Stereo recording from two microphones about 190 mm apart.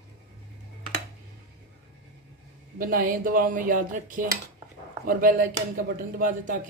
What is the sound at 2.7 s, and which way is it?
Speech, 45° right (ahead or behind).